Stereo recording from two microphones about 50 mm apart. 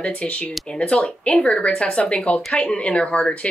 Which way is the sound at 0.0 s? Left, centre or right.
Left.